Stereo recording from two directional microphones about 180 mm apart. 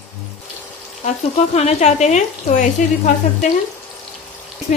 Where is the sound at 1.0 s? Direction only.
35° left (ahead or behind).